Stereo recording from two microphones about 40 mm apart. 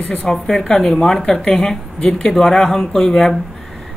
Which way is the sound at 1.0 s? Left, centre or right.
Centre.